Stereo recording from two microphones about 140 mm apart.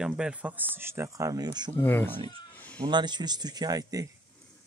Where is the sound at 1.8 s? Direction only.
15° left (ahead or behind).